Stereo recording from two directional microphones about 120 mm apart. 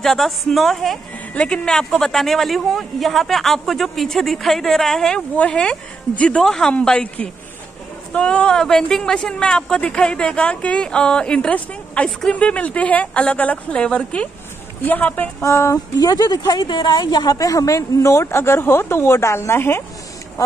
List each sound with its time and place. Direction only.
0.0 s a woman's voice: 5° left (ahead or behind); by 19.8 s 20° left (ahead or behind)